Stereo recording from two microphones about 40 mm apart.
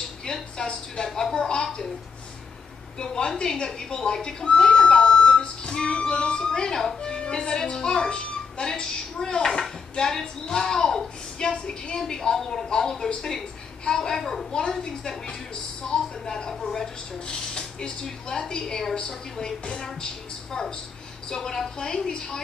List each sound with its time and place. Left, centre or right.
0.2 s a sound: centre
3.0 s speech: centre
7.1 s music: left
7.5 s a woman's voice: centre
14.8 s speech: centre